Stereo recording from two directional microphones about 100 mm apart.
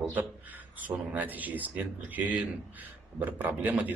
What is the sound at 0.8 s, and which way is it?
A man's voice, 15° right (ahead or behind).